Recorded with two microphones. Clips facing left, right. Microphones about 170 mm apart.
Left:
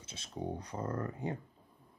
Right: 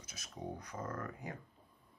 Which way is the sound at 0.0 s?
30° left (ahead or behind).